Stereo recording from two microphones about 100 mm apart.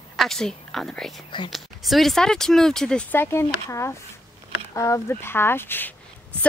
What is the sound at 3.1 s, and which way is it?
Speech, 25° left (ahead or behind).